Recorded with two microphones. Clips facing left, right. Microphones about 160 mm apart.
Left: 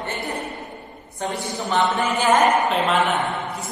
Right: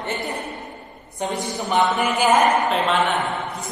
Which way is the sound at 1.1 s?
15° right (ahead or behind).